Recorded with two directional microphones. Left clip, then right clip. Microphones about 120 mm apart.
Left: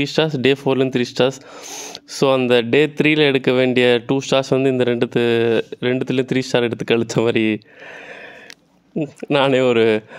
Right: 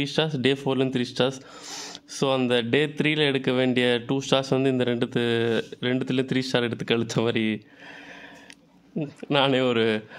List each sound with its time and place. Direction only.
0.0 s speech: 30° left (ahead or behind)
1.6 s speech: 15° left (ahead or behind)
2.0 s speech: 30° left (ahead or behind)
9.2 s speech: 30° left (ahead or behind)